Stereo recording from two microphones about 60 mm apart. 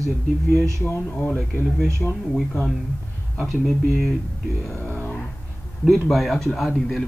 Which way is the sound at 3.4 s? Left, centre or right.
Centre.